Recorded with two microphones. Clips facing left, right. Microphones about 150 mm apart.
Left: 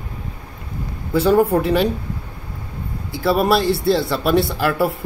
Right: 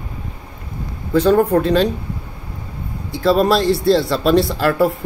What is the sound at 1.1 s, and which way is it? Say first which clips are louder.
Speech: right 2 dB; 10° left (ahead or behind).